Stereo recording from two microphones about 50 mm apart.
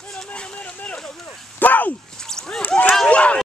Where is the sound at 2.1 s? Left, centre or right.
Centre.